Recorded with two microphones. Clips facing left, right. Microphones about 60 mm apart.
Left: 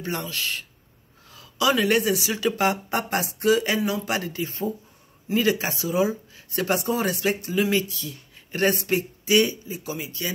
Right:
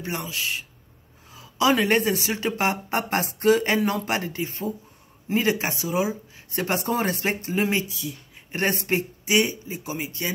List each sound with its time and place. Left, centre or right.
0.0 s speech: centre
1.3 s a sound: right
1.7 s speech: right
4.1 s speech: right